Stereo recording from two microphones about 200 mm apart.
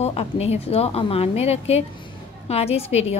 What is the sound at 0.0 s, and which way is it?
A woman's voice, 30° left (ahead or behind).